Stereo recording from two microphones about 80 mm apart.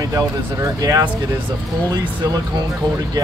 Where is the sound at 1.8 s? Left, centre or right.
Right.